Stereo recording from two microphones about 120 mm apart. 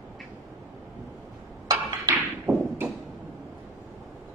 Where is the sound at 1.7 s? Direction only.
20° right (ahead or behind).